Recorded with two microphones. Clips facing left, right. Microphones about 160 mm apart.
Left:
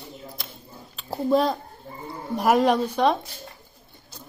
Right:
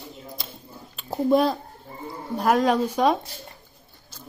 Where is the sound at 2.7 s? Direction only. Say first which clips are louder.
Right 1 dB; 5° right (ahead or behind).